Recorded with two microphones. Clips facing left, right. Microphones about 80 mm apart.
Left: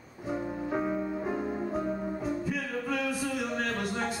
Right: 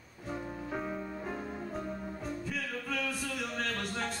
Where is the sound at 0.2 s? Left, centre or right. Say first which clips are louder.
Left 6 dB; centre.